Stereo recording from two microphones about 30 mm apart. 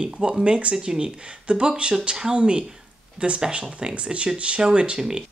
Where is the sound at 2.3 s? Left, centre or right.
Right.